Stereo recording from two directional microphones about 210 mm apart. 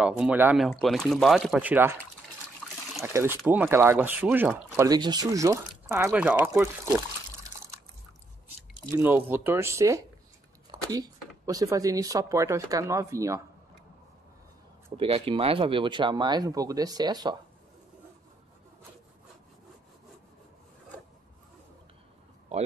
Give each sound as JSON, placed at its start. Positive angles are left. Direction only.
{"t": 0.0, "sound": "speech", "side_deg": -5}
{"t": 2.6, "sound": "trickle", "side_deg": 5}
{"t": 3.0, "sound": "speech", "side_deg": -15}
{"t": 8.5, "sound": "speech", "side_deg": -10}
{"t": 15.0, "sound": "speech", "side_deg": -25}